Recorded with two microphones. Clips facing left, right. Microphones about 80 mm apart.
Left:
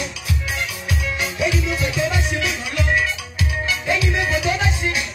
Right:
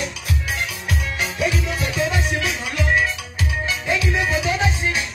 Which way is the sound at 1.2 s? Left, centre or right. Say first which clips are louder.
Left 1 dB; right.